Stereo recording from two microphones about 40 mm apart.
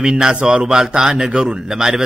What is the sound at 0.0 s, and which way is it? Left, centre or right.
A man's voice, centre.